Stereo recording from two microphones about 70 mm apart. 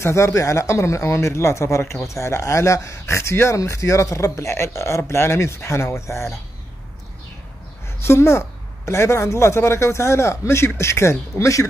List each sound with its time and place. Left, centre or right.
0.0 s speech: left
8.0 s a woman's voice: left